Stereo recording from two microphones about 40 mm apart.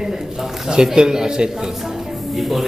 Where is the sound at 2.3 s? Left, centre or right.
Centre.